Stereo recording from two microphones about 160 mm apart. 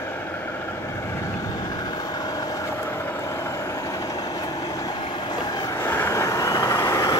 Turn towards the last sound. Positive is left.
turn(degrees=20)  # may be behind; listen again after turning